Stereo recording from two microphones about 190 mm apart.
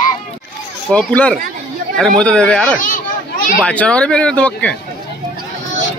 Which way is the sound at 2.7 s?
45° left (ahead or behind).